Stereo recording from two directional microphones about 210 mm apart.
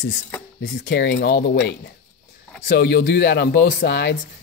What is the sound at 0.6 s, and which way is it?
Speech, 55° left (ahead or behind).